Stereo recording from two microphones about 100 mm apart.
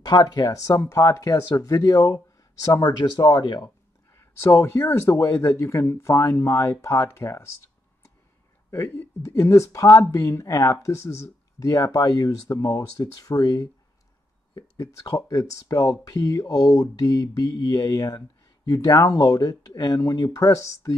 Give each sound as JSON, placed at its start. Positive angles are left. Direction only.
{"t": 0.0, "sound": "speech", "side_deg": 40}
{"t": 4.1, "sound": "speech", "side_deg": 25}
{"t": 8.6, "sound": "speech", "side_deg": 25}